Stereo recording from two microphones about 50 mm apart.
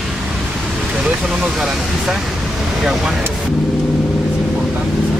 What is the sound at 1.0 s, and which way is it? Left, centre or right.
Speech, centre.